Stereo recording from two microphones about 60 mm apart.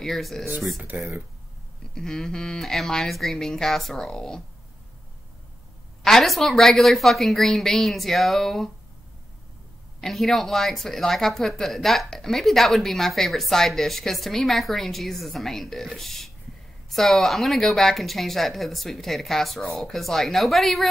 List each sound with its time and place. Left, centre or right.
0.0 s speech: centre
2.0 s speech: centre
6.0 s speech: centre
9.9 s speech: centre